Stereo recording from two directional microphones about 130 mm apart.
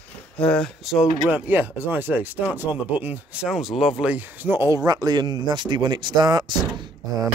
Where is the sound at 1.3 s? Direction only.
15° right (ahead or behind).